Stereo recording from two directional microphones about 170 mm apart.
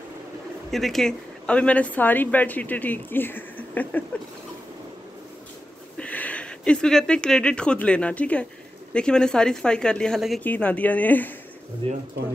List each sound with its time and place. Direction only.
0.7 s a woman's voice: centre (ahead or behind)
5.9 s a woman's voice: 10° left (ahead or behind)
11.8 s speech: 30° right (ahead or behind)